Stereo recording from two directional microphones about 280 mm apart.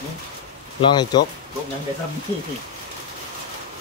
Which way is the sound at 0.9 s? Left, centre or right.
Centre.